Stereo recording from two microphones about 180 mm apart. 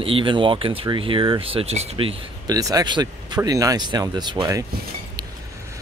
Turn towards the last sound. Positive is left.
turn(degrees=-20)  # may be behind; listen again after turning